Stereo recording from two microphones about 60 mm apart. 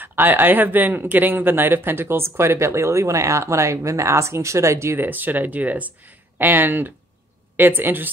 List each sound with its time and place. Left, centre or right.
0.0 s speech: right
4.9 s speech: right